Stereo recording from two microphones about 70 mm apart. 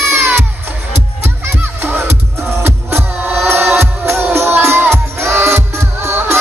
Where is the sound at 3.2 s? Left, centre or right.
Right.